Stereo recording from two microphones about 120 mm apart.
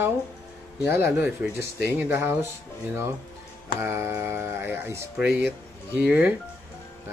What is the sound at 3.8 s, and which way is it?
Speech, 20° right (ahead or behind).